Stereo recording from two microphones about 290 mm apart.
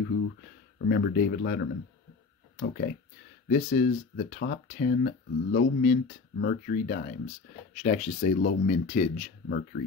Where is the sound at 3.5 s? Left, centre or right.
Left.